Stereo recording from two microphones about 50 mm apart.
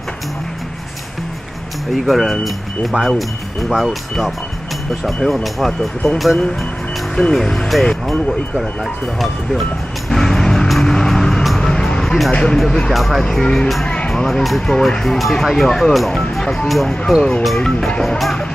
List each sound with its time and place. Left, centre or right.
2.0 s speech: centre
7.2 s speech: centre
9.2 s vehicle: centre
10.9 s music: centre
12.3 s speech: centre
12.5 s speech: centre
13.2 s speech: centre
13.8 s music: centre
14.7 s speech: centre